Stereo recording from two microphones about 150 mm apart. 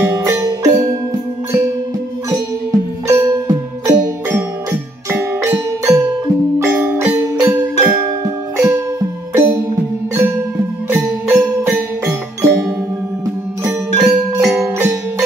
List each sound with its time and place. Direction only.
0.0 s music: 15° right (ahead or behind)
2.7 s music: 20° right (ahead or behind)
5.1 s music: 15° right (ahead or behind)
8.5 s music: 15° right (ahead or behind)
13.7 s music: centre (ahead or behind)